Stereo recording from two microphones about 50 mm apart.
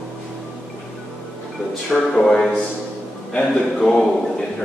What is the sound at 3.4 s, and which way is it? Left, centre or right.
Speech, left.